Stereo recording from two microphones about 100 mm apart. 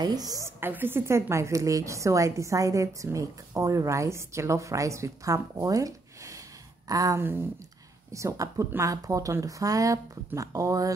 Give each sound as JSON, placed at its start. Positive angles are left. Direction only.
{"t": 0.0, "sound": "a woman's voice", "side_deg": -40}
{"t": 0.6, "sound": "a woman's voice", "side_deg": -20}
{"t": 7.2, "sound": "a woman's voice", "side_deg": -20}